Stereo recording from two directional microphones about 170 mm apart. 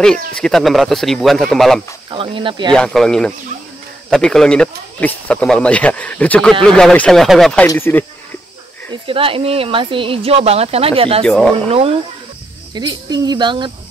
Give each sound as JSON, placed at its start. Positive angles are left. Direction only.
{"t": 0.4, "sound": "speech", "side_deg": 0}
{"t": 2.0, "sound": "speech", "side_deg": -30}
{"t": 2.7, "sound": "speech", "side_deg": 5}
{"t": 7.6, "sound": "speech", "side_deg": 15}
{"t": 9.0, "sound": "speech", "side_deg": -30}
{"t": 11.2, "sound": "speech", "side_deg": 5}
{"t": 11.5, "sound": "speech", "side_deg": -35}
{"t": 12.7, "sound": "speech", "side_deg": -25}